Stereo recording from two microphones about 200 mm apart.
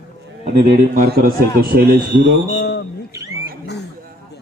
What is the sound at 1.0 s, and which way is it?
Speech, 45° right (ahead or behind).